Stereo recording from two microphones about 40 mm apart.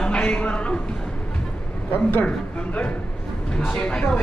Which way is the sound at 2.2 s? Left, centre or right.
Left.